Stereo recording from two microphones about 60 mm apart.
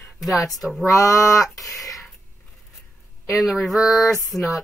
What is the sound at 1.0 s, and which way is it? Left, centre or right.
Speech, left.